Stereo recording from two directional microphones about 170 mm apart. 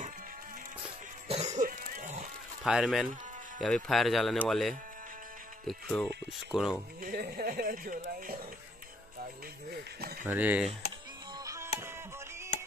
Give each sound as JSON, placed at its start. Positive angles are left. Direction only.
{"t": 1.3, "sound": "music", "side_deg": -40}
{"t": 2.6, "sound": "speech", "side_deg": -5}
{"t": 7.0, "sound": "speech", "side_deg": -55}
{"t": 10.2, "sound": "speech", "side_deg": -10}
{"t": 11.3, "sound": "music", "side_deg": -20}